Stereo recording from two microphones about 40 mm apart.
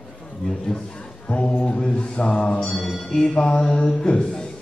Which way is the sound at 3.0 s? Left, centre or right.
Centre.